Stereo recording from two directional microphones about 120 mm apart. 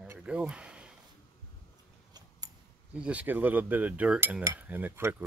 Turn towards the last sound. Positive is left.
turn(degrees=-20)  # may be behind; listen again after turning